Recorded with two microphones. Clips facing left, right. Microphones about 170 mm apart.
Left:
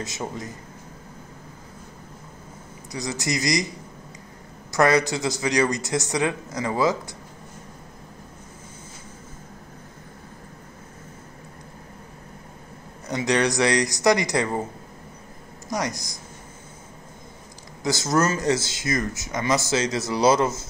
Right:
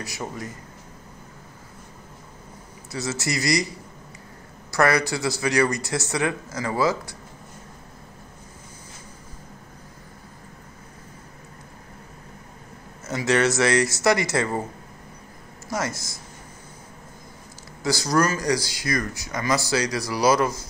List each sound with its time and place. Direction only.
0.0 s speech: 20° left (ahead or behind)
2.9 s speech: 15° left (ahead or behind)
4.6 s speech: 20° left (ahead or behind)
13.0 s speech: 15° left (ahead or behind)
15.7 s speech: 20° left (ahead or behind)
17.8 s speech: 20° left (ahead or behind)